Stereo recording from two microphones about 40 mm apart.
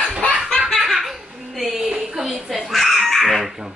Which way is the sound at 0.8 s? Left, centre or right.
Centre.